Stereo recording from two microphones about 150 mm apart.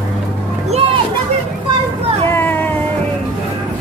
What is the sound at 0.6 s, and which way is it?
Children playing, 45° right (ahead or behind).